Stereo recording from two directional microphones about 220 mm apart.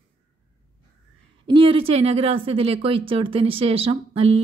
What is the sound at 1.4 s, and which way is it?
A woman's voice, 25° right (ahead or behind).